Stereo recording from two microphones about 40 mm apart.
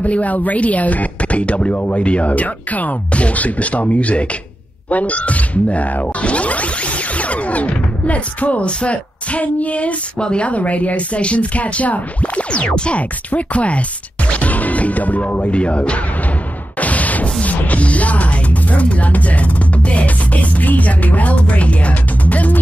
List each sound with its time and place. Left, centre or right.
0.0 s speech: left
16.8 s music: left
19.9 s speech: left